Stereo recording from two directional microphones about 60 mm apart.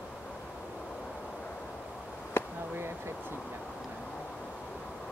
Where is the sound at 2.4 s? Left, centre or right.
Left.